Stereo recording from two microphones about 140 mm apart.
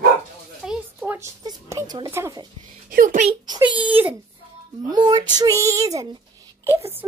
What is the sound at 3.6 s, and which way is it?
Wail, 40° right (ahead or behind).